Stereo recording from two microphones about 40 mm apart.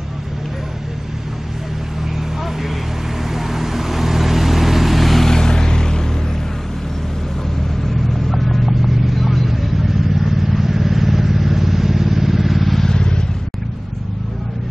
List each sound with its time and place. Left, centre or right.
3.3 s vehicle: centre
5.3 s vehicle: centre
8.3 s vehicle: centre
12.8 s vehicle: centre